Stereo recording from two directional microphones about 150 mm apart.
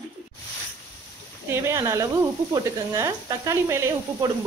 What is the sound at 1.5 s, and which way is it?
Sizzle, 20° right (ahead or behind).